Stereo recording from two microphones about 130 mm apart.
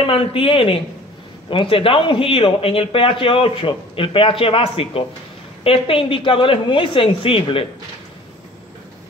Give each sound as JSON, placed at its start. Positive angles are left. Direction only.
{"t": 0.0, "sound": "speech", "side_deg": 45}